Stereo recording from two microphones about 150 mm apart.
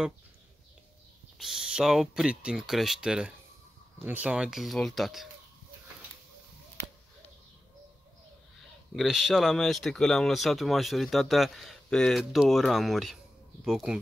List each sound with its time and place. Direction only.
1.4 s speech: 5° right (ahead or behind)
8.9 s speech: centre (ahead or behind)